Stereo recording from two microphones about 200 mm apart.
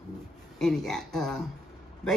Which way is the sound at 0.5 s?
Centre (ahead or behind).